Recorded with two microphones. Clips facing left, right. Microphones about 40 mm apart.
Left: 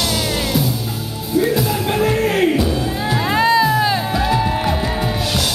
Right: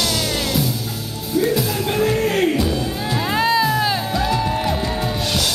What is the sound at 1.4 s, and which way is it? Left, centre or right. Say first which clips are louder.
Music: left 1 dB; centre.